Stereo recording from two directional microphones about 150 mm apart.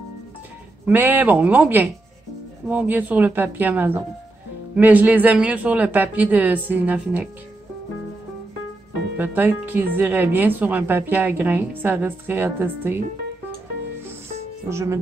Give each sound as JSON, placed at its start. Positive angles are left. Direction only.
{"t": 0.8, "sound": "speech", "side_deg": -10}
{"t": 9.1, "sound": "speech", "side_deg": -10}
{"t": 14.7, "sound": "speech", "side_deg": -20}